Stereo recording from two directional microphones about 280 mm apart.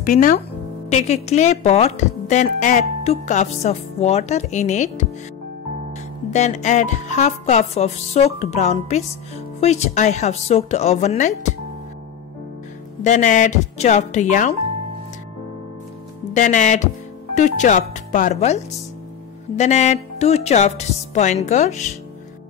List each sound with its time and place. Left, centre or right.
0.0 s speech: left
6.3 s speech: left
13.0 s speech: left
16.3 s speech: left